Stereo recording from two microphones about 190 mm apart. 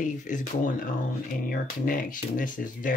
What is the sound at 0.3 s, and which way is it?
Speech, 40° left (ahead or behind).